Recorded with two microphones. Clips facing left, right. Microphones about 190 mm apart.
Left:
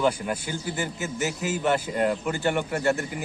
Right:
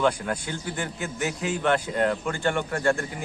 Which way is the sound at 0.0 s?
5° left (ahead or behind).